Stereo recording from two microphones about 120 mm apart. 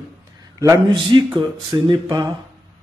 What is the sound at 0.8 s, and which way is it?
Speech, 45° right (ahead or behind).